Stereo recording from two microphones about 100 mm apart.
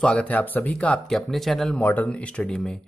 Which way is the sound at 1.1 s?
Centre (ahead or behind).